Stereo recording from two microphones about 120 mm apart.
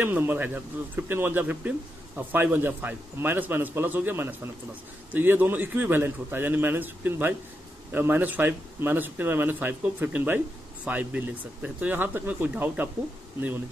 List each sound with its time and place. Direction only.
0.0 s speech: 15° right (ahead or behind)